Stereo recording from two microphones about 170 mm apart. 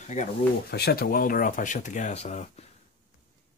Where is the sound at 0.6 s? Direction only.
70° left (ahead or behind); by 2.7 s 40° left (ahead or behind).